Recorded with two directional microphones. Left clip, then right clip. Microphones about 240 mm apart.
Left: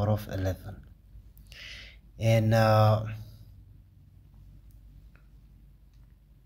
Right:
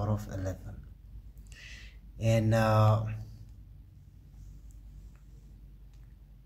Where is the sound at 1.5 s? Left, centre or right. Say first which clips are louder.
Left 5 dB; left.